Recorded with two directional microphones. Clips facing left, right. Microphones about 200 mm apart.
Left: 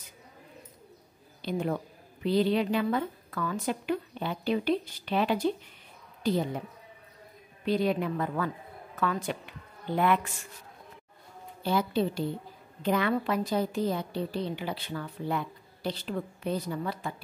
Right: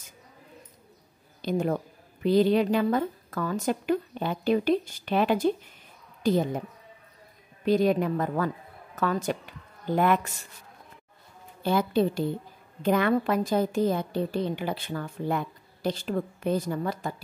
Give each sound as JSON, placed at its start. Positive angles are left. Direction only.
{"t": 1.4, "sound": "a woman's voice", "side_deg": -45}
{"t": 7.6, "sound": "a woman's voice", "side_deg": -45}
{"t": 11.6, "sound": "a woman's voice", "side_deg": -50}